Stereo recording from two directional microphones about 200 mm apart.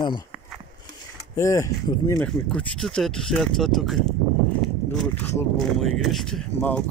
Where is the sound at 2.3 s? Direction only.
5° left (ahead or behind).